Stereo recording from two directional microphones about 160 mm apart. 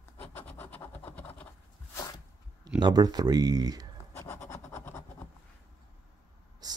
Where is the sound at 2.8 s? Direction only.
25° right (ahead or behind).